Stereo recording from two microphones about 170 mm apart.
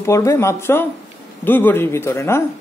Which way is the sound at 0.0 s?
15° left (ahead or behind).